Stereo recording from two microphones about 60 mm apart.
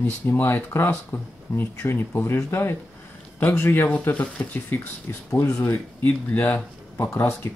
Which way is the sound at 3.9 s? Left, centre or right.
Left.